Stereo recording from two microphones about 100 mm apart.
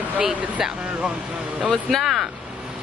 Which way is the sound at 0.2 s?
5° right (ahead or behind).